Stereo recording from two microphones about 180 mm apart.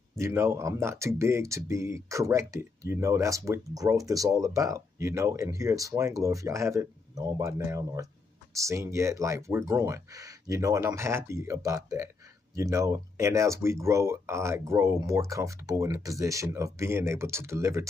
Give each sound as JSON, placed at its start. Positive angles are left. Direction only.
{"t": 0.2, "sound": "speech", "side_deg": -15}